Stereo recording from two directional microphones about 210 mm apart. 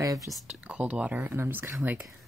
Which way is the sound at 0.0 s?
15° right (ahead or behind).